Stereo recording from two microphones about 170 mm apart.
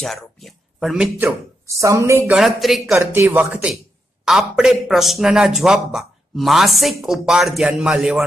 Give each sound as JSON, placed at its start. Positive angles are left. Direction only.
{"t": 0.0, "sound": "speech", "side_deg": 0}
{"t": 1.7, "sound": "speech", "side_deg": -20}
{"t": 2.3, "sound": "speech", "side_deg": 0}
{"t": 3.0, "sound": "speech", "side_deg": -15}